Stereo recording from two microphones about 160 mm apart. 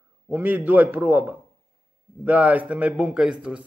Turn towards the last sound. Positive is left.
turn(degrees=-5)  # may be behind; listen again after turning